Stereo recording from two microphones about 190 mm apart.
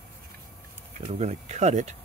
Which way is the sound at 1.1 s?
35° right (ahead or behind).